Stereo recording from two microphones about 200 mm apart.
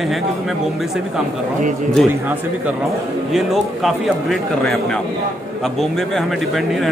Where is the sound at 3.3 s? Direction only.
Centre (ahead or behind).